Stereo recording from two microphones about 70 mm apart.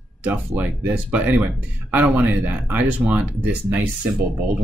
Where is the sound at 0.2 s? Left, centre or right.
Right.